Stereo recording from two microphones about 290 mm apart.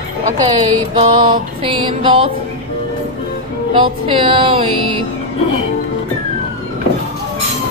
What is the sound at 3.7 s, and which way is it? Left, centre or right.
Speech, centre.